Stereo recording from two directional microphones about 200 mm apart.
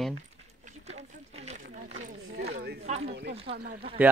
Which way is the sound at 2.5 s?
55° right (ahead or behind).